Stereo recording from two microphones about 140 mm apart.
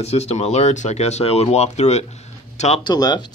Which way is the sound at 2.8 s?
30° left (ahead or behind).